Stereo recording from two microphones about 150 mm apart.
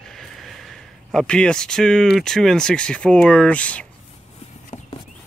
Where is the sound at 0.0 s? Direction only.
Centre (ahead or behind).